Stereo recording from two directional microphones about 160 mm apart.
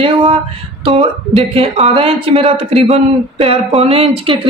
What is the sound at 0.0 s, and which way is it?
Speech, 35° right (ahead or behind).